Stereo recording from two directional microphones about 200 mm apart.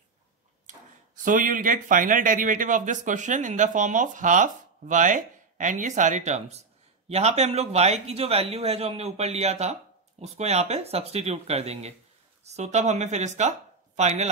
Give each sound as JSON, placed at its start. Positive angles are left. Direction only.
{"t": 0.7, "sound": "speech", "side_deg": -40}